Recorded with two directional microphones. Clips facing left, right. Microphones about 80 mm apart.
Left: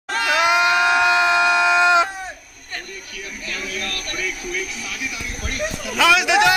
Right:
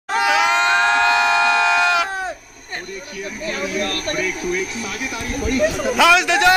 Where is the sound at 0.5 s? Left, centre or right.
Centre.